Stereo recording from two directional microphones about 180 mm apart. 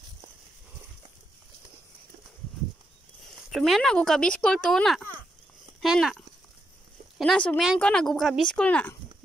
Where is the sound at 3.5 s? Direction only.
Centre (ahead or behind).